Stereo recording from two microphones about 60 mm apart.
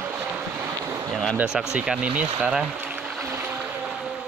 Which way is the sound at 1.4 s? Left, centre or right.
Centre.